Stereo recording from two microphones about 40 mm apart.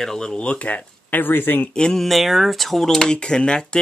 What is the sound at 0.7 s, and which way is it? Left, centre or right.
Speech, left.